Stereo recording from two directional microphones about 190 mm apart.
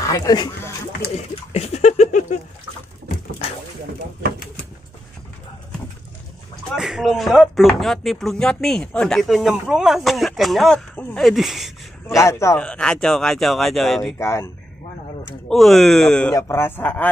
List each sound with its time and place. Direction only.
0.0 s speech: 20° left (ahead or behind)
1.5 s a sound: 35° left (ahead or behind)
6.7 s speech: centre (ahead or behind)
12.2 s speech: 15° left (ahead or behind)
14.1 s speech: 15° left (ahead or behind)
15.5 s speech: centre (ahead or behind)